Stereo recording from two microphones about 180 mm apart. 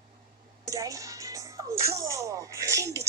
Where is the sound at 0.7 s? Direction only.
20° right (ahead or behind).